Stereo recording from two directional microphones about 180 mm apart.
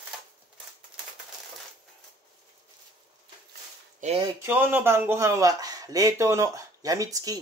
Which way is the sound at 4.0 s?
35° right (ahead or behind).